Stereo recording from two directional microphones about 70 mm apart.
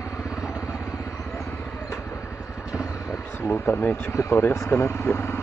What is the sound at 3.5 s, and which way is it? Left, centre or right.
Speech, left.